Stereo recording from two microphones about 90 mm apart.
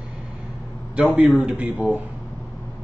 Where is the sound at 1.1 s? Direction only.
15° right (ahead or behind).